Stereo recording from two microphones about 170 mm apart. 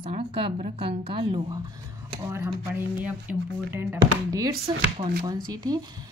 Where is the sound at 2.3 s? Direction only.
10° right (ahead or behind).